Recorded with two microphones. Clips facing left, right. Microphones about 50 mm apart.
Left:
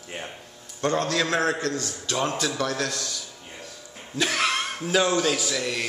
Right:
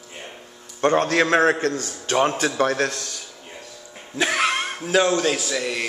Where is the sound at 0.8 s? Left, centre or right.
Right.